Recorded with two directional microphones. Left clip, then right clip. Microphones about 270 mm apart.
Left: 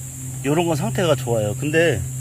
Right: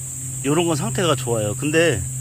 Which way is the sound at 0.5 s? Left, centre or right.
Centre.